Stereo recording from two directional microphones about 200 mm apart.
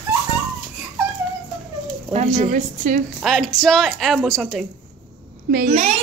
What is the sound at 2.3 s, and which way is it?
Speech, 35° right (ahead or behind).